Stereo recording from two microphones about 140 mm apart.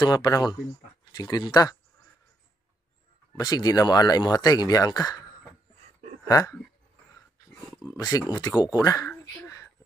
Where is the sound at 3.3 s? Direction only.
30° left (ahead or behind).